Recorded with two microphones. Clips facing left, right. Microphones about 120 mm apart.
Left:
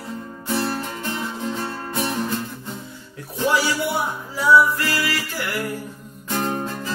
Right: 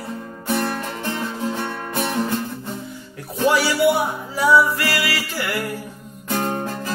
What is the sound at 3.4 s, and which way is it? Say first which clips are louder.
Music: right 4 dB; 65° right (ahead or behind).